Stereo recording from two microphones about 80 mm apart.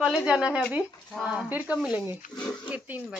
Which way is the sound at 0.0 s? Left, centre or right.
Centre.